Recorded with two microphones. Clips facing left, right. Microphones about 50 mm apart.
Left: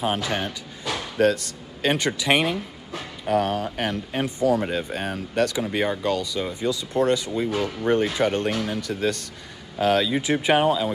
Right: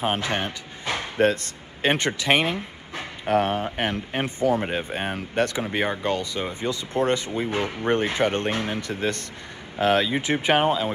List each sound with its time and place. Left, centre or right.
0.0 s speech: right
2.2 s speech: right
2.5 s speech: right